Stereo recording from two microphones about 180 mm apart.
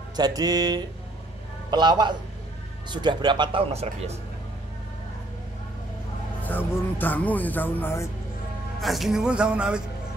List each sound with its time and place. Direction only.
0.1 s speech: 20° right (ahead or behind)
6.4 s speech: 10° left (ahead or behind)
8.8 s speech: centre (ahead or behind)